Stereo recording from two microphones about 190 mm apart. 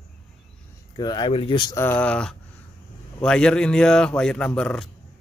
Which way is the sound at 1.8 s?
10° left (ahead or behind).